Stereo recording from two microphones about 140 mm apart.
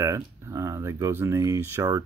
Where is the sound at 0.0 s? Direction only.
20° right (ahead or behind).